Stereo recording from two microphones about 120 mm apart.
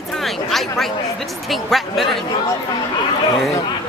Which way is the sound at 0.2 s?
Centre (ahead or behind).